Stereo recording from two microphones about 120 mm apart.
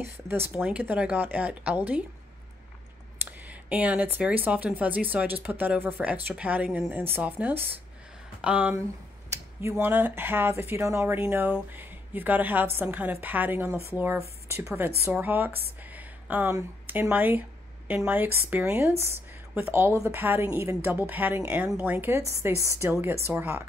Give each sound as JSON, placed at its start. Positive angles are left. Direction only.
{"t": 0.0, "sound": "speech", "side_deg": -20}
{"t": 3.3, "sound": "speech", "side_deg": -15}